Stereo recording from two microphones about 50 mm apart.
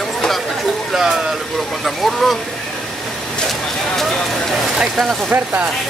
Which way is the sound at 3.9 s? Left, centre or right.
Centre.